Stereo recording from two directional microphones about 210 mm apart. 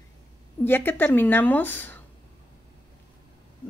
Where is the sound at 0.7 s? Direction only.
10° left (ahead or behind).